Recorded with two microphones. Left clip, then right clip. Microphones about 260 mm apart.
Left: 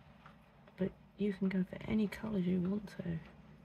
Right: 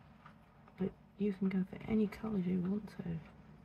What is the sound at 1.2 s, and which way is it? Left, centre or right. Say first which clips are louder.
Speech: left 1 dB; left.